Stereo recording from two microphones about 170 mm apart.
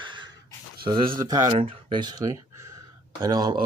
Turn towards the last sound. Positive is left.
turn(degrees=-20)  # may be behind; listen again after turning